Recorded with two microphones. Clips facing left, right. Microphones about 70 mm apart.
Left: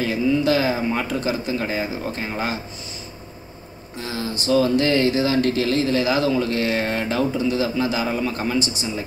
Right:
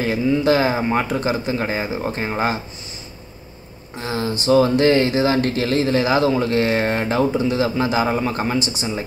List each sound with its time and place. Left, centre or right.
0.0 s speech: right
1.5 s speech: right
1.8 s speech: right
4.0 s speech: right